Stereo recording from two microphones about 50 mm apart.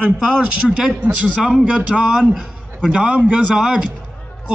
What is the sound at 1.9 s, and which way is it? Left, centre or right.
Speech, centre.